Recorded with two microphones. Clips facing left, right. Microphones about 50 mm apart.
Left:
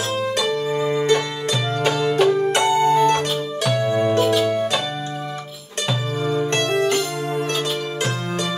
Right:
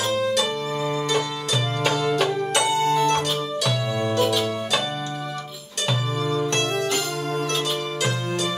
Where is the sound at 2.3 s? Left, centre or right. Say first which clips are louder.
Left 4 dB; centre.